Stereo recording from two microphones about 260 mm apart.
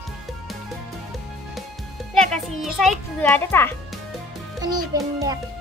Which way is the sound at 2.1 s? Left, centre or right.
Centre.